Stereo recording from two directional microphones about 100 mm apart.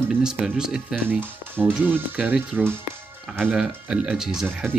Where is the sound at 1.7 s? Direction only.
20° right (ahead or behind).